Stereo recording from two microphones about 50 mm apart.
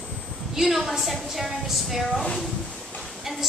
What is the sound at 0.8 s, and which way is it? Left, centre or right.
A woman's voice, centre.